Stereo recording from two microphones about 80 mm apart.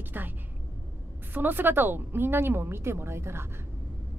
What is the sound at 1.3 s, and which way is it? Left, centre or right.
Speech, right.